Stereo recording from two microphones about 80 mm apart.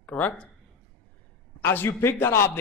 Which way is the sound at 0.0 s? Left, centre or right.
Centre.